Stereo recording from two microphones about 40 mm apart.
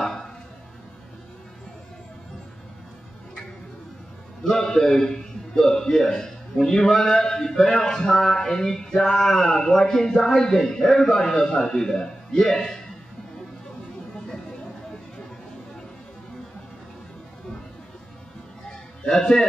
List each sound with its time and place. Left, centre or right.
4.5 s a man's voice: centre
19.0 s a man's voice: centre